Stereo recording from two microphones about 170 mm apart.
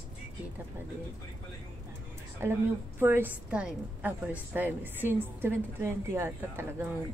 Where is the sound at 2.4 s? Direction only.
15° right (ahead or behind).